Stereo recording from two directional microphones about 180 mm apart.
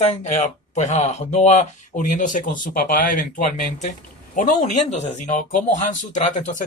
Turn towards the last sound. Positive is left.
turn(degrees=40)  # may be behind; listen again after turning